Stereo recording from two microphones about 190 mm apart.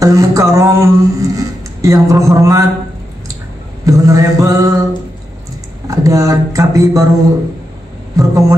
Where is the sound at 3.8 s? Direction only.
15° right (ahead or behind).